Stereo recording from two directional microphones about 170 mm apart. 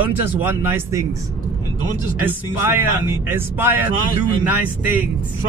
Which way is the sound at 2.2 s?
15° right (ahead or behind).